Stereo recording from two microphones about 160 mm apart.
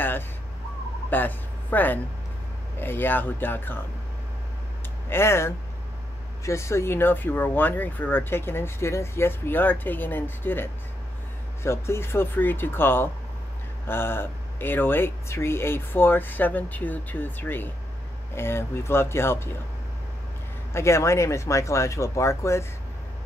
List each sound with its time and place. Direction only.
1.1 s speech: 10° left (ahead or behind)
5.1 s speech: 15° left (ahead or behind)
20.7 s speech: 15° left (ahead or behind)